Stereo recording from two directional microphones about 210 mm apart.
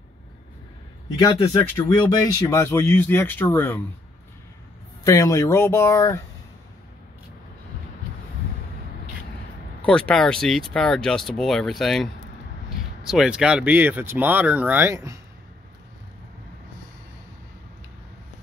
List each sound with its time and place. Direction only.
1.1 s speech: 20° left (ahead or behind)
5.0 s speech: 15° left (ahead or behind)
9.8 s speech: 5° left (ahead or behind); by 15.1 s 10° right (ahead or behind)